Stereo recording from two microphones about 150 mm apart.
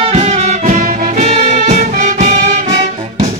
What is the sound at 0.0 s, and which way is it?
Music, 45° right (ahead or behind).